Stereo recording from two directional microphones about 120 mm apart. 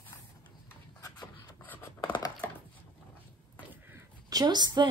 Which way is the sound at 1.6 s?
15° left (ahead or behind).